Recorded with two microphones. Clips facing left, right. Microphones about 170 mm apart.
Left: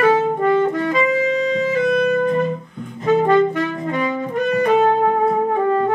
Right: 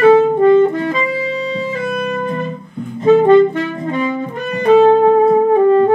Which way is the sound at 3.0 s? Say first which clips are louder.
Right 6 dB; 25° right (ahead or behind).